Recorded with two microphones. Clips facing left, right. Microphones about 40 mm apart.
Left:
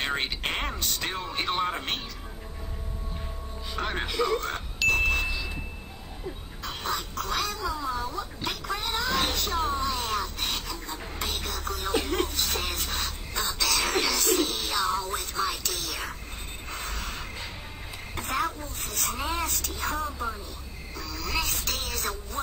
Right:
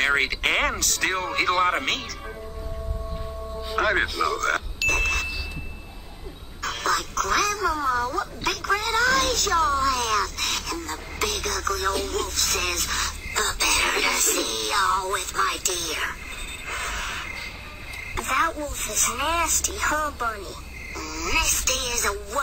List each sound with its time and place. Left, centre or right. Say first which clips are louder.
0.2 s speech: right 8 dB; right
3.7 s speech: right 7 dB; right
4.8 s ding: even; right
6.6 s speech: right 7 dB; right
11.9 s speech: even; left
12.4 s speech: right 4 dB; right
16.6 s a sound: right 6 dB; right
18.1 s speech: right 6 dB; right